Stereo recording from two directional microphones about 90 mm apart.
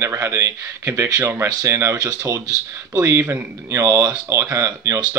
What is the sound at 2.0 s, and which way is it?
Speech, 45° right (ahead or behind).